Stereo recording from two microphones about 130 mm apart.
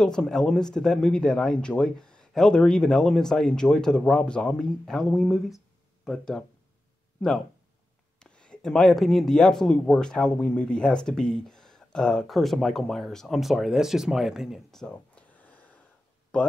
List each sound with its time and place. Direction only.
0.0 s speech: 5° left (ahead or behind)